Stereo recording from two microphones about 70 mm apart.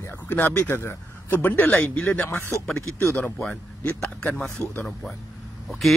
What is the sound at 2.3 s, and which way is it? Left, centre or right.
Speech, left.